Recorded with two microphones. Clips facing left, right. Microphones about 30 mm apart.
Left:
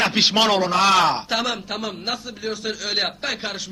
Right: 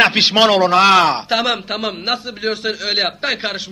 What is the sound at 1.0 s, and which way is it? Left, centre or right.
A man's voice, right.